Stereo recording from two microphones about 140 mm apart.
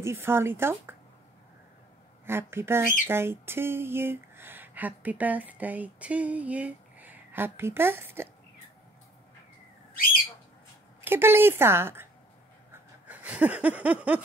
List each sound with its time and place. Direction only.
0.0 s a woman's voice: 20° right (ahead or behind)
2.2 s speech: 15° right (ahead or behind)
11.0 s a woman's voice: 15° right (ahead or behind)
13.0 s a sound: 10° right (ahead or behind)